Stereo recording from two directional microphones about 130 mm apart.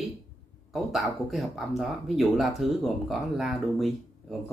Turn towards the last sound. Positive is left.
turn(degrees=0)  # may be behind; listen again after turning